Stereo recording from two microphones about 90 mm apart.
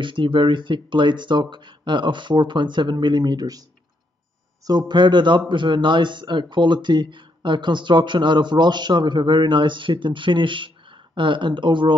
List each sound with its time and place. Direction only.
0.0 s speech: 65° right (ahead or behind); by 3.6 s 45° right (ahead or behind)
4.6 s speech: 55° right (ahead or behind)